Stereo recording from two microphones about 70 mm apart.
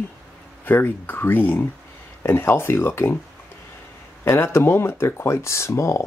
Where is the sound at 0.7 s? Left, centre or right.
Left.